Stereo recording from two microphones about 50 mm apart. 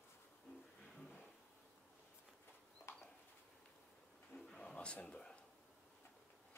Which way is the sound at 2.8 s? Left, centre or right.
Left.